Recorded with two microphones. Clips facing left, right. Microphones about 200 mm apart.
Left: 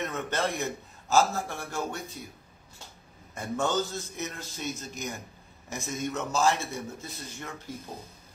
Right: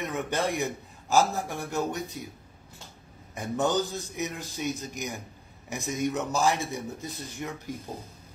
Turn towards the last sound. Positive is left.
turn(degrees=-15)  # may be behind; listen again after turning